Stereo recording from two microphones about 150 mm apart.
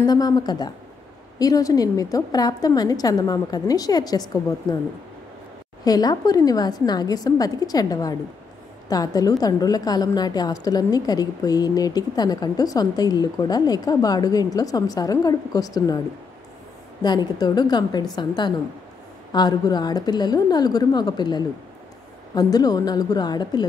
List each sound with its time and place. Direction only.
0.0 s a woman's voice: 25° left (ahead or behind)
5.9 s a woman's voice: 25° left (ahead or behind)
17.0 s a woman's voice: 25° left (ahead or behind)